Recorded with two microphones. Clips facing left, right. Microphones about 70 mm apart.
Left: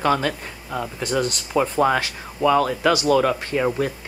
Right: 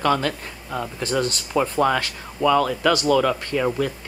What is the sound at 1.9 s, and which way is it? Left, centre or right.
Speech, centre.